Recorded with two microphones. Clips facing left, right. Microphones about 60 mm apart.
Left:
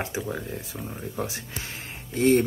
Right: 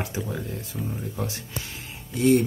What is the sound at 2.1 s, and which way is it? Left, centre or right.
Speech, left.